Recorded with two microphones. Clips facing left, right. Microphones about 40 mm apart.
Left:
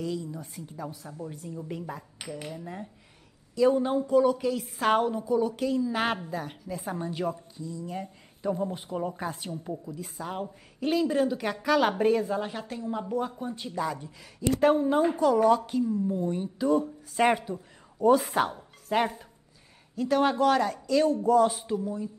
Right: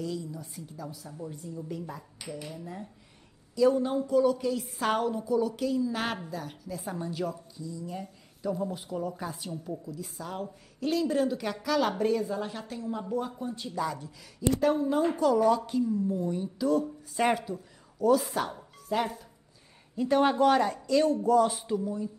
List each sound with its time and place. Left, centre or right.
0.3 s a woman's voice: left
0.8 s a woman's voice: left
1.6 s a woman's voice: left
2.1 s cutlery: left
2.5 s a woman's voice: left
11.1 s a woman's voice: centre
11.3 s a woman's voice: centre
14.6 s a woman's voice: left
15.0 s a woman's voice: centre
18.2 s a woman's voice: left
20.0 s speech: centre